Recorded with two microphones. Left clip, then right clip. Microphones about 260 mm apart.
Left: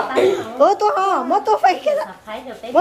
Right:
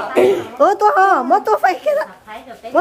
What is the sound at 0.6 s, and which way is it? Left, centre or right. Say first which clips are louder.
Speech: right 3 dB; centre.